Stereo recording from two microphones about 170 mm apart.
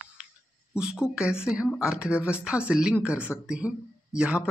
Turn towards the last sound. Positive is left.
turn(degrees=-5)  # may be behind; listen again after turning